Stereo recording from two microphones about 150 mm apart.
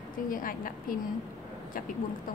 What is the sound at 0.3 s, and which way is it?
Speech, 65° left (ahead or behind).